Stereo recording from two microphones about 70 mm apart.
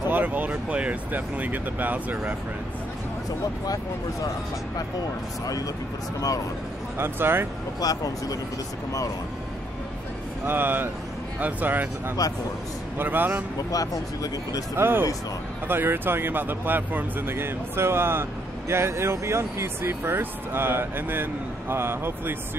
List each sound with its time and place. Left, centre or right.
0.1 s speech: right
3.6 s speech: left
7.0 s speech: right
7.8 s speech: left
10.4 s speech: right
12.2 s speech: left
12.9 s speech: right
13.6 s speech: left
14.8 s speech: right